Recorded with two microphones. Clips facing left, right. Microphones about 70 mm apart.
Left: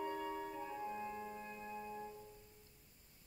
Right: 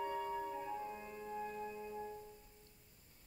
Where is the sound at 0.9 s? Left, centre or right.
Centre.